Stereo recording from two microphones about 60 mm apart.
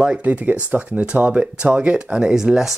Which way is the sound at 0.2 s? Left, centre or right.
Right.